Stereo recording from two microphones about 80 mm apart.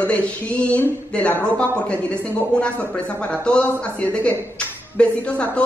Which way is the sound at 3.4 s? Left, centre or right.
Centre.